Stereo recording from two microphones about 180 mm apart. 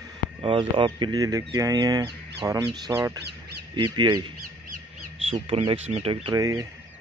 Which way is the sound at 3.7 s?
25° right (ahead or behind).